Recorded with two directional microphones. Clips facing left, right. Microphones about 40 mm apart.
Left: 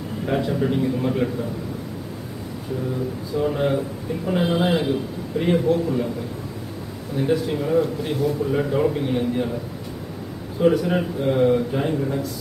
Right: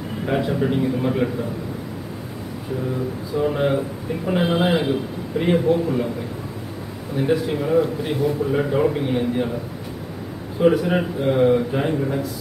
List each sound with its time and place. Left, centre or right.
0.3 s a man's voice: centre
3.4 s a man's voice: right
7.2 s a man's voice: centre
10.6 s a man's voice: centre